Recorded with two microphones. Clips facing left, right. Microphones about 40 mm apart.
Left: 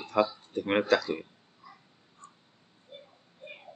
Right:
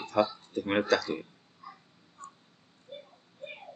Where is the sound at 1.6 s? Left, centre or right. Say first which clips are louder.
Right 4 dB; right.